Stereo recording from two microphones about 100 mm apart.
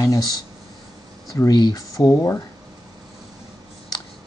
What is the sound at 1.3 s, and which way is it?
Speech, 45° left (ahead or behind).